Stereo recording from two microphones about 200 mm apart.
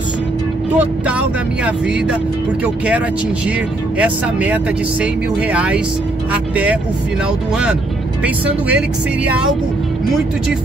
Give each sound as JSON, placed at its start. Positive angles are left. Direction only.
{"t": 0.7, "sound": "speech", "side_deg": -5}
{"t": 4.0, "sound": "speech", "side_deg": -5}
{"t": 8.2, "sound": "speech", "side_deg": -5}